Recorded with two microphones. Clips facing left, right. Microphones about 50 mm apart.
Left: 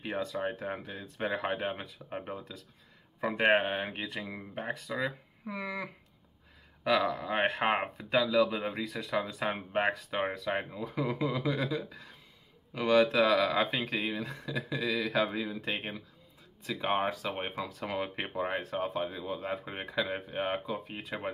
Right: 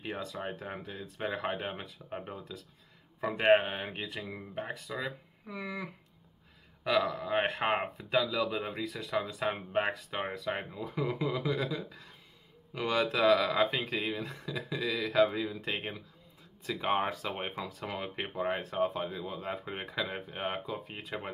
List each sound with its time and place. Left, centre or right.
0.3 s speech: centre
10.8 s speech: centre
12.7 s speech: centre